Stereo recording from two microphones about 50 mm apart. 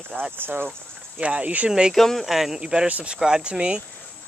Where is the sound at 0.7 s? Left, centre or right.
Right.